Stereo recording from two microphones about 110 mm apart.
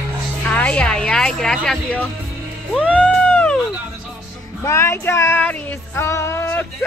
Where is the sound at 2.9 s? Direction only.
10° left (ahead or behind).